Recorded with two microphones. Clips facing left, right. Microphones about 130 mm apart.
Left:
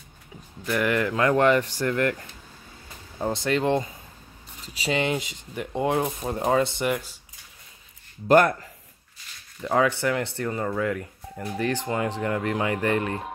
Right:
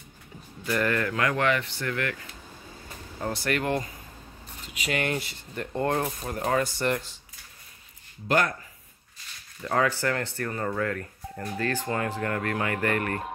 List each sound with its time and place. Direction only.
0.7 s speech: 10° left (ahead or behind)
1.2 s speech: 35° left (ahead or behind)
3.2 s speech: 20° left (ahead or behind)
8.3 s speech: 50° left (ahead or behind)
9.6 s speech: 15° left (ahead or behind)